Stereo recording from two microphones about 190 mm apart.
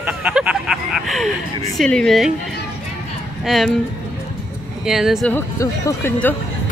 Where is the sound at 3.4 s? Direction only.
Centre (ahead or behind).